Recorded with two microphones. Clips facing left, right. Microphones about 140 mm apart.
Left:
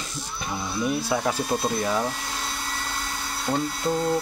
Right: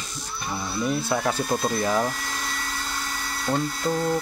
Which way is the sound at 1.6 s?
5° left (ahead or behind).